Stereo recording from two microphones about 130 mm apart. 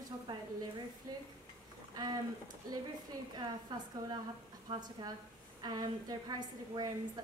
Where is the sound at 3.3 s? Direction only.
35° right (ahead or behind).